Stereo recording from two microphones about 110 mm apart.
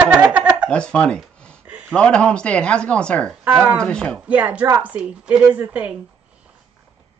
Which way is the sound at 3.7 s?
5° left (ahead or behind).